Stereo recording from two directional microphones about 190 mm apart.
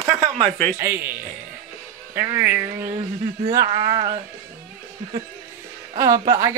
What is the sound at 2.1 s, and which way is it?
Speech, 15° right (ahead or behind).